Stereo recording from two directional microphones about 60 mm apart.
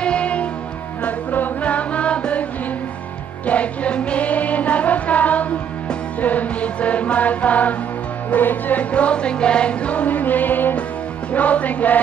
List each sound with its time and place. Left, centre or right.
0.0 s music: centre
3.4 s music: left